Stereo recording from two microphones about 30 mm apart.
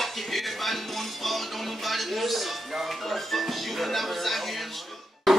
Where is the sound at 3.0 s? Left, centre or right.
Centre.